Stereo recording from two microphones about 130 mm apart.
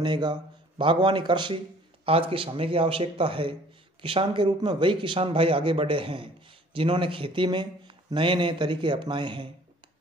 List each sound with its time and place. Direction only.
0.0 s a man's voice: 35° right (ahead or behind)
2.0 s a man's voice: 45° right (ahead or behind)